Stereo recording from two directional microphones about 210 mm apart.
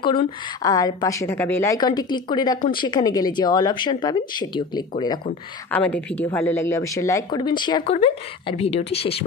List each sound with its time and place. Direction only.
0.0 s a woman's voice: 20° left (ahead or behind)
5.7 s a woman's voice: 5° left (ahead or behind); by 9.2 s 30° left (ahead or behind)